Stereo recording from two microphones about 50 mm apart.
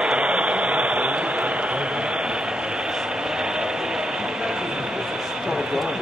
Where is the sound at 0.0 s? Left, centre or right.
Right.